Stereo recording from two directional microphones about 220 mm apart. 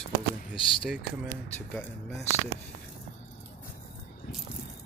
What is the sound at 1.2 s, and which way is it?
Speech, 10° left (ahead or behind).